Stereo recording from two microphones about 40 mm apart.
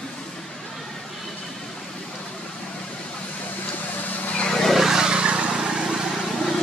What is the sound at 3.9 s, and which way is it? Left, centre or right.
Vehicle, left.